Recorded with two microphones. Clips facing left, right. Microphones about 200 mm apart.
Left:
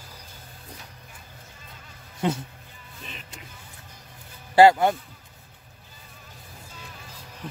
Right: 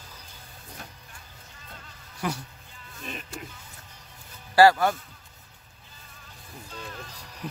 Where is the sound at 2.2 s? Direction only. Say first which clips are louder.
Left 5 dB; 25° left (ahead or behind).